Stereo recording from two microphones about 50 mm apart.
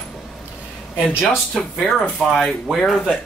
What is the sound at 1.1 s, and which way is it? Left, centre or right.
Speech, centre.